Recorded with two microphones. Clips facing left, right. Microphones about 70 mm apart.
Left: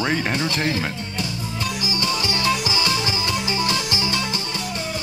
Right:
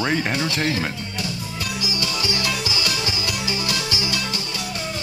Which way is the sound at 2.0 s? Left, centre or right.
Left.